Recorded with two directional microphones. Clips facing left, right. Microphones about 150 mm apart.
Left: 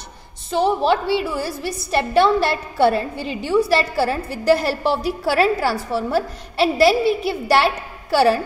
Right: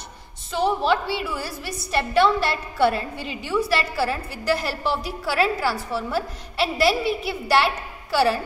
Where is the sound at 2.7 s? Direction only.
35° left (ahead or behind).